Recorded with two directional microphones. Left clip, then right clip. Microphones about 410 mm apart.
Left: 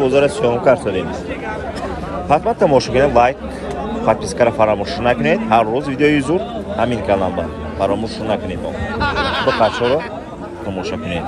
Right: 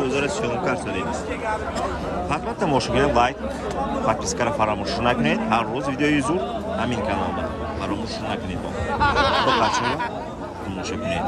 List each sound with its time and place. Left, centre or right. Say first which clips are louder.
0.0 s speech: left 9 dB; centre
2.2 s speech: left 13 dB; centre
7.8 s speech: left 13 dB; centre
9.0 s a sound: left 2 dB; right